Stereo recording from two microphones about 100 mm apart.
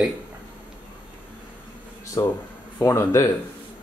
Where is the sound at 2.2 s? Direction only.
45° left (ahead or behind).